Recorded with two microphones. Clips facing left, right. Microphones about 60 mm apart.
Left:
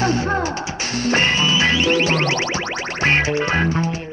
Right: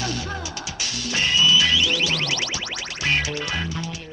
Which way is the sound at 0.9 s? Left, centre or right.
Left.